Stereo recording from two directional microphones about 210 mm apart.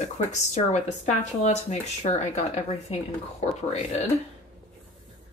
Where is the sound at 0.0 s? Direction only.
35° left (ahead or behind).